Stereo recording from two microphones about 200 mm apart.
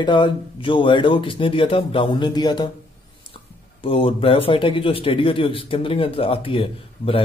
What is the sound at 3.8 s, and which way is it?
Speech, 25° left (ahead or behind).